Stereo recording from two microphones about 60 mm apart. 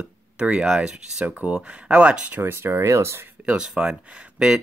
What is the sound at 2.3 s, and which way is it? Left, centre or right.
Speech, right.